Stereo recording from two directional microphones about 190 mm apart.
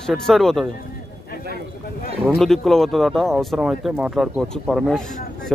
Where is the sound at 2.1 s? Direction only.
Centre (ahead or behind).